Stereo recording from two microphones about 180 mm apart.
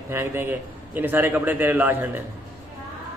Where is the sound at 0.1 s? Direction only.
10° right (ahead or behind).